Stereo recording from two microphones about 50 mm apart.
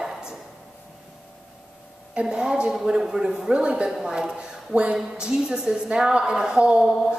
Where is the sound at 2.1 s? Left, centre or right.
Centre.